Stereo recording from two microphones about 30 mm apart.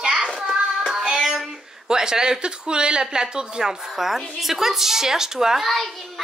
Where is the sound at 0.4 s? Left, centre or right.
Centre.